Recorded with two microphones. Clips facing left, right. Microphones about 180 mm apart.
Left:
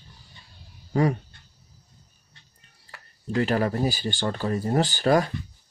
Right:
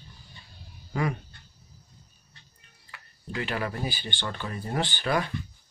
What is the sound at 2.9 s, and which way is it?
Speech, 40° left (ahead or behind).